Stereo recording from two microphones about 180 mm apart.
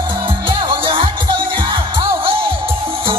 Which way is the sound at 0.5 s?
25° right (ahead or behind).